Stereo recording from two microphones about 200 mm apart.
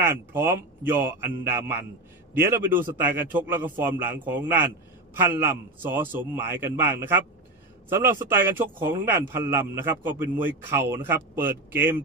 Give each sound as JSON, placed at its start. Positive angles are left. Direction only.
{"t": 0.0, "sound": "speech", "side_deg": -10}